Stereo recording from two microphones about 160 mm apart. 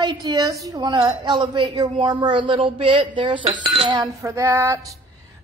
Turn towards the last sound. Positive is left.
turn(degrees=-15)  # may be behind; listen again after turning